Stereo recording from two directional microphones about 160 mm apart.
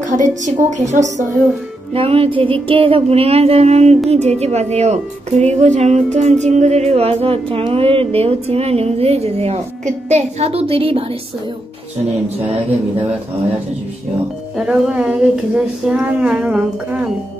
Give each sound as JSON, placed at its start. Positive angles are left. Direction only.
{"t": 0.0, "sound": "a woman's voice", "side_deg": -50}
{"t": 2.0, "sound": "a woman's voice", "side_deg": -35}
{"t": 14.7, "sound": "speech", "side_deg": -5}